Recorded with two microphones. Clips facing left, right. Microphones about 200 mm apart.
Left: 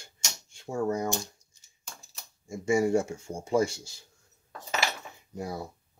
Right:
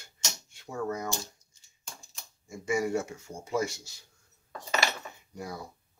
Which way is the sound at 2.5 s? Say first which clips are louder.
Left 5 dB; 30° left (ahead or behind).